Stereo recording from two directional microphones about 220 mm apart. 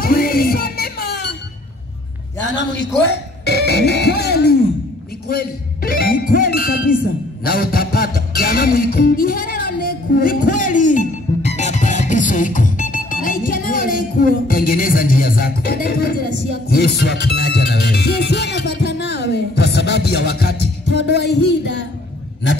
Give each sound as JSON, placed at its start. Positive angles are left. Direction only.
{"t": 0.0, "sound": "music", "side_deg": 45}
{"t": 3.1, "sound": "music", "side_deg": 50}
{"t": 5.3, "sound": "speech", "side_deg": 40}
{"t": 7.4, "sound": "music", "side_deg": 40}